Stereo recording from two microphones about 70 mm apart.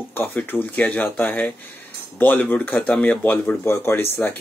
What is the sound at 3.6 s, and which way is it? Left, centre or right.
Speech, left.